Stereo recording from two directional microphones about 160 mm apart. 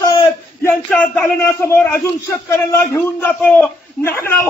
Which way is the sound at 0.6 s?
10° left (ahead or behind).